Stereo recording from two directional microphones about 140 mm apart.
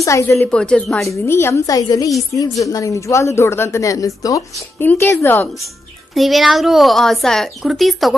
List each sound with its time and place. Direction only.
0.0 s speech: 20° left (ahead or behind)
0.5 s speech: 10° left (ahead or behind)
1.0 s speech: 20° left (ahead or behind)
6.1 s a woman's voice: centre (ahead or behind)